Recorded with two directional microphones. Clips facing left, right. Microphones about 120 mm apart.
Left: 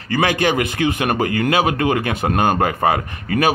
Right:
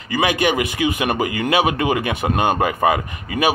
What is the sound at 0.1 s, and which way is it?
Speech, 15° right (ahead or behind).